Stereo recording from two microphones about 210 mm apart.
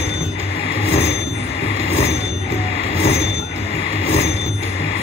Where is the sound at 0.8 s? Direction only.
30° left (ahead or behind).